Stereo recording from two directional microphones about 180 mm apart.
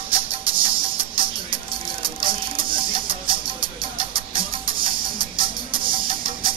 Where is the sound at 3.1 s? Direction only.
30° right (ahead or behind).